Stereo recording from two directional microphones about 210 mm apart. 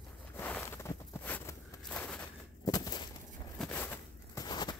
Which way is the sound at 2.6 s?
15° left (ahead or behind).